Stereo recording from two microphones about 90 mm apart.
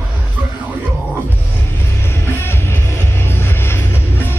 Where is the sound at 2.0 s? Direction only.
25° left (ahead or behind).